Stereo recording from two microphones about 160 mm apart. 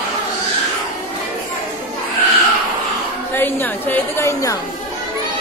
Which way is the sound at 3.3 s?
15° left (ahead or behind).